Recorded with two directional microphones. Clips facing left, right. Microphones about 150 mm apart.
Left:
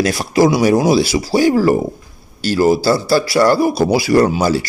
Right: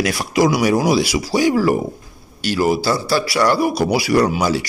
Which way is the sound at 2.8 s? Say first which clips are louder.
Left 4 dB; 35° left (ahead or behind).